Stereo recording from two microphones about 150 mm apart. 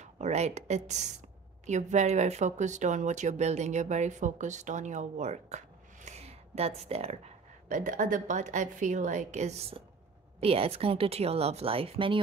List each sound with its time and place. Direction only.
0.0 s speech: 50° right (ahead or behind)
6.0 s a sound: 45° right (ahead or behind)
7.6 s a woman's voice: 60° right (ahead or behind); by 12.2 s 35° right (ahead or behind)